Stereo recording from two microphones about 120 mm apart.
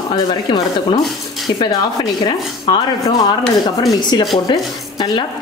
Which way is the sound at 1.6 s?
30° left (ahead or behind).